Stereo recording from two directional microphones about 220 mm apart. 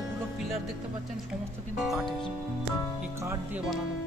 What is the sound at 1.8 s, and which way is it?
Speech, centre (ahead or behind).